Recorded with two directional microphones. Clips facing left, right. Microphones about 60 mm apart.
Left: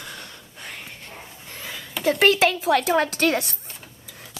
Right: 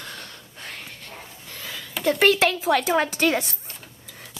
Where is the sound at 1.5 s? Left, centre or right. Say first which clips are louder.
Even; centre.